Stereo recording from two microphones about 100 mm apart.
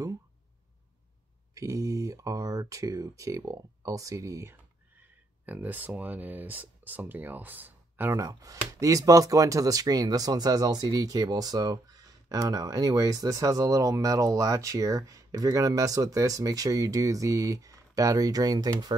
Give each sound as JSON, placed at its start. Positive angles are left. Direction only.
{"t": 1.5, "sound": "speech", "side_deg": -35}
{"t": 5.4, "sound": "speech", "side_deg": -15}
{"t": 8.2, "sound": "speech", "side_deg": -35}